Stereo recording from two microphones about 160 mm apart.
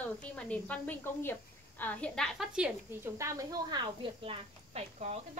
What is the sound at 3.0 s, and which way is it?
Speech, 20° right (ahead or behind).